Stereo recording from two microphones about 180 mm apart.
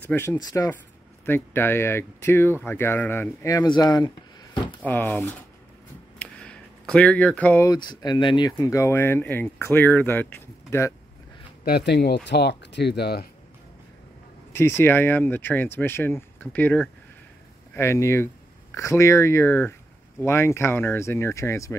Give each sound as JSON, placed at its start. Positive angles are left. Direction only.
{"t": 0.1, "sound": "speech", "side_deg": 10}
{"t": 0.4, "sound": "speech", "side_deg": 20}
{"t": 4.8, "sound": "speech", "side_deg": 10}
{"t": 11.6, "sound": "speech", "side_deg": 65}
{"t": 14.5, "sound": "speech", "side_deg": 15}